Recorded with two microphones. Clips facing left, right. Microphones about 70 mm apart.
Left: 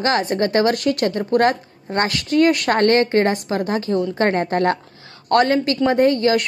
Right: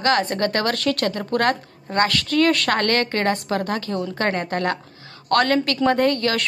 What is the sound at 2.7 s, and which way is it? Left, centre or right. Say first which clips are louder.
A woman's voice: left 5 dB; left.